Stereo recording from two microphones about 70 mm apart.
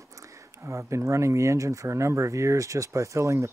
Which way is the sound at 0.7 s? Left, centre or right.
Right.